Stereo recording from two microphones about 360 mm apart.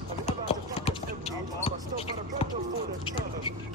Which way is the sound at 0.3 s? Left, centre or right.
Centre.